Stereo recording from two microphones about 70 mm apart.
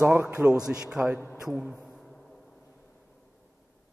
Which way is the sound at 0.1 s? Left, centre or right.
Right.